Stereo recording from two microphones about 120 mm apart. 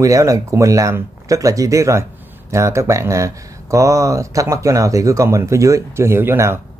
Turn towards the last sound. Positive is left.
turn(degrees=-20)  # may be behind; listen again after turning